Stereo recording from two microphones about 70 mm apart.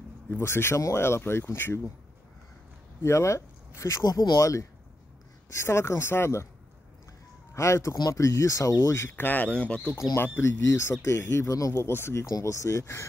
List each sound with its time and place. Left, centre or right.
0.4 s speech: left
3.0 s speech: left
4.0 s speech: left
4.4 s speech: left
7.5 s speech: left
8.8 s speech: left; by 9.8 s centre
10.1 s speech: left